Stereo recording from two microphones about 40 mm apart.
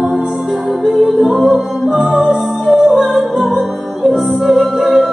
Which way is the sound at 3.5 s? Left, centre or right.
Centre.